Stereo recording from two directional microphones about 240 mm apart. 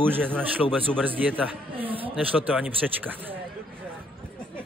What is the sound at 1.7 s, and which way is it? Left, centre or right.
Speech, right.